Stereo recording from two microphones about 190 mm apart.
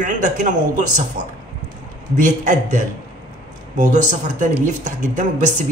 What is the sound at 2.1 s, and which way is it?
A man's voice, 40° right (ahead or behind).